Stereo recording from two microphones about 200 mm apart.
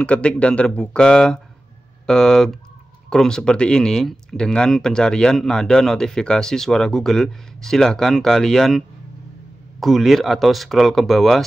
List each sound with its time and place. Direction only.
0.0 s speech: 5° left (ahead or behind)